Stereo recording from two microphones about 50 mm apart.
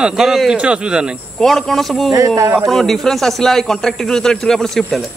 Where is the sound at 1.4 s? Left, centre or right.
Centre.